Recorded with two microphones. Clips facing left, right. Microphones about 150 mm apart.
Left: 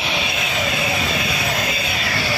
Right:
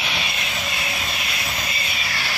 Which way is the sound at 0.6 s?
90° left.